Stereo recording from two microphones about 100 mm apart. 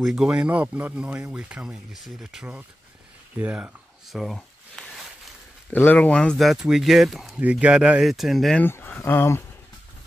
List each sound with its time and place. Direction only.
0.0 s speech: 5° right (ahead or behind)
4.1 s a sound: centre (ahead or behind)
5.7 s speech: 20° left (ahead or behind); by 7.3 s centre (ahead or behind)
7.3 s speech: 15° right (ahead or behind)
8.5 s speech: 20° left (ahead or behind)